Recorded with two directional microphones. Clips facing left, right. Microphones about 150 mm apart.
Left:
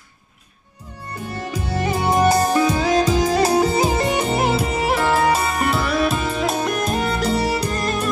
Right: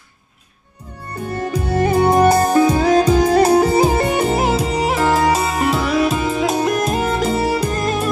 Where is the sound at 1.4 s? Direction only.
55° right (ahead or behind).